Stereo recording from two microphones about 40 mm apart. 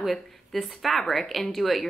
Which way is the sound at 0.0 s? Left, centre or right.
Centre.